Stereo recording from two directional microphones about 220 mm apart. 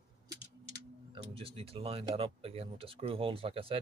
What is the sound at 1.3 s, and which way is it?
Speech, 25° right (ahead or behind).